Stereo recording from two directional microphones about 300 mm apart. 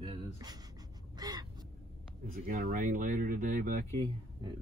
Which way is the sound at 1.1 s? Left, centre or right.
Centre.